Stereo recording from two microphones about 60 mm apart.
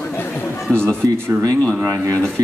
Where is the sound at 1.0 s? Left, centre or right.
Right.